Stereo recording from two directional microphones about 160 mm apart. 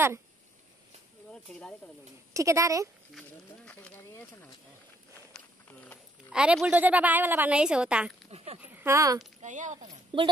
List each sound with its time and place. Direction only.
1.3 s speech: 5° left (ahead or behind)
2.3 s speech: 20° right (ahead or behind)
3.2 s speech: 5° left (ahead or behind)
5.3 s walk: 10° left (ahead or behind)
6.3 s a woman's voice: 5° right (ahead or behind)
9.4 s speech: 50° right (ahead or behind)
10.1 s a woman's voice: 30° right (ahead or behind)